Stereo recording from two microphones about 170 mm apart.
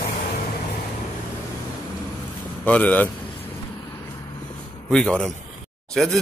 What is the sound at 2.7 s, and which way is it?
Speech, 10° left (ahead or behind).